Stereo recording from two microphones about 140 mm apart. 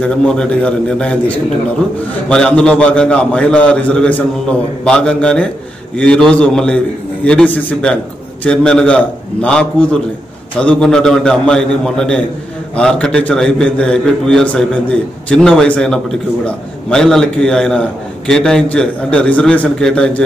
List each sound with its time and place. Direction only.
0.0 s a man's voice: 5° left (ahead or behind)